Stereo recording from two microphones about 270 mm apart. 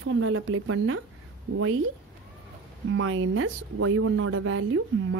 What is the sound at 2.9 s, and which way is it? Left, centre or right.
Speech, right.